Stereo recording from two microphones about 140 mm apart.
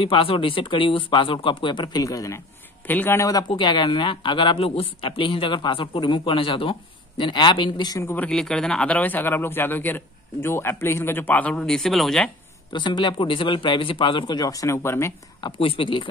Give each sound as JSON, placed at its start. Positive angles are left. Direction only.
{"t": 0.0, "sound": "speech", "side_deg": 40}
{"t": 8.3, "sound": "a man's voice", "side_deg": 5}
{"t": 12.7, "sound": "speech", "side_deg": 35}
{"t": 15.4, "sound": "speech", "side_deg": 40}